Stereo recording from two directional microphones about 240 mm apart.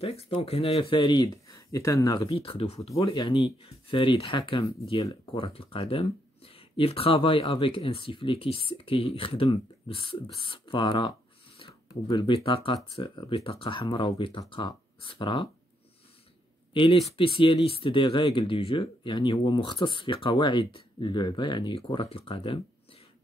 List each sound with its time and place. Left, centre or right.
0.0 s speech: left
16.7 s speech: left